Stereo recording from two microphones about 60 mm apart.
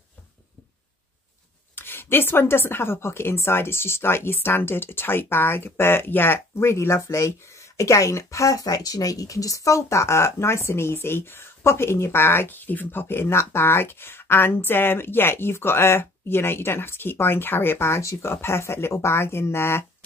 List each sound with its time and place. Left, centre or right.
1.8 s a woman's voice: left